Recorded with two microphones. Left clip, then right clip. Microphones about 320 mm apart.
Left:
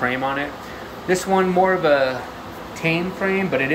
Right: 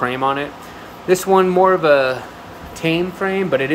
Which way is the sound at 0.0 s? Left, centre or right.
Centre.